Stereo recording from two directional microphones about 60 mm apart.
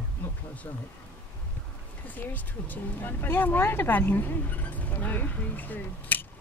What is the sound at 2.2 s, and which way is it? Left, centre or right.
Speech, left.